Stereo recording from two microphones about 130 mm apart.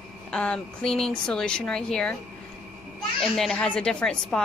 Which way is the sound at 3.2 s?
5° left (ahead or behind).